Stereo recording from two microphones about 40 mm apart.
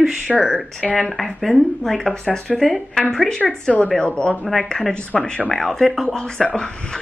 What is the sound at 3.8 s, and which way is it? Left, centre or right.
Speech, left.